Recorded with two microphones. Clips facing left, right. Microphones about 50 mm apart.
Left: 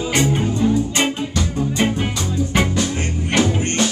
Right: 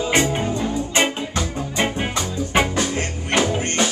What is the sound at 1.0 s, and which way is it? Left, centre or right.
Music, right.